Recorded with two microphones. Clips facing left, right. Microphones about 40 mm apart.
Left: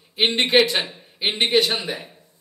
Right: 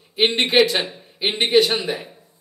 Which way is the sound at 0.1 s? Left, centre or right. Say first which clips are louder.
Even; centre.